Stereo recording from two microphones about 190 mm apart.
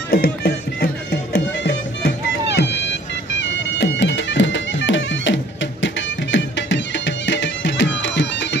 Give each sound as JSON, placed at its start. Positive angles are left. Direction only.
{"t": 0.1, "sound": "music", "side_deg": 50}
{"t": 3.3, "sound": "bagpipes", "side_deg": 70}